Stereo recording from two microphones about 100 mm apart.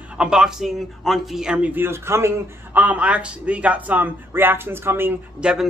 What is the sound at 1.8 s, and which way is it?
A man's voice, 25° right (ahead or behind).